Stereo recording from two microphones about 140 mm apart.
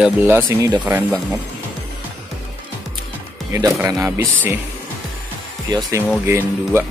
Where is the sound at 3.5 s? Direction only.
20° right (ahead or behind).